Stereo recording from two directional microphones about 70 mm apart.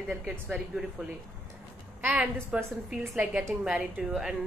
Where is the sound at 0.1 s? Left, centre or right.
Centre.